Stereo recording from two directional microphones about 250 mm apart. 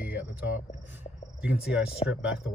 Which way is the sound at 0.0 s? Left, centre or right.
Centre.